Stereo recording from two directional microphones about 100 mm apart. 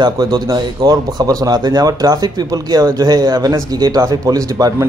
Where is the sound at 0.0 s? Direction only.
40° right (ahead or behind).